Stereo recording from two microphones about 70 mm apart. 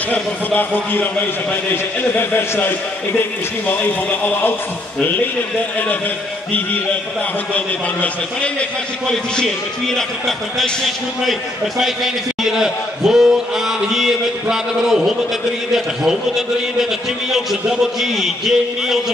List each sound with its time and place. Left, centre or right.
0.1 s a man's voice: left
7.5 s a man's voice: centre
9.0 s a man's voice: centre
11.8 s a man's voice: centre